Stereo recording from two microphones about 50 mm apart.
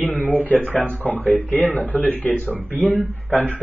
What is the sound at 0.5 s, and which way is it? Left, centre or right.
Speech, right.